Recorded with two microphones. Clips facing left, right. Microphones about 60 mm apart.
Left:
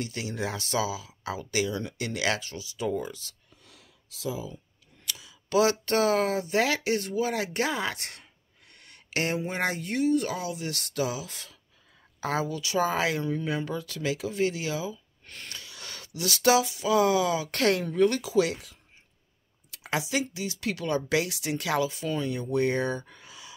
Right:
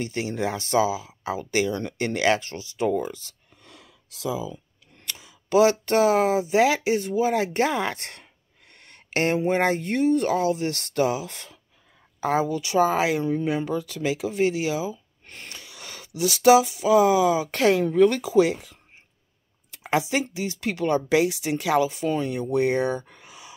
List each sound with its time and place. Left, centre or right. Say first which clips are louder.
0.0 s speech: right 5 dB; right
3.6 s a sound: right 8 dB; right
5.0 s speech: right 1 dB; right
12.3 s speech: right 6 dB; right
19.8 s speech: right 5 dB; right